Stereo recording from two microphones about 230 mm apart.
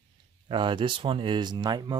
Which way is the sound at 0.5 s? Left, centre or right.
Right.